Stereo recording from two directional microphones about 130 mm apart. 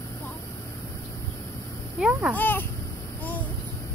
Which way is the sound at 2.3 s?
15° left (ahead or behind).